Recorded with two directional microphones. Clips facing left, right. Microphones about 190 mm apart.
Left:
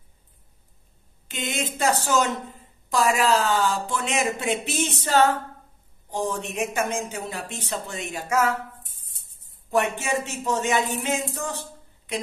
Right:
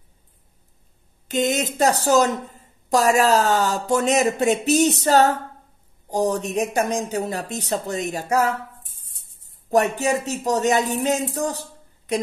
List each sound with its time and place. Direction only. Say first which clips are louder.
1.3 s speech: right 8 dB; 40° right (ahead or behind)
9.7 s speech: right 5 dB; 40° right (ahead or behind)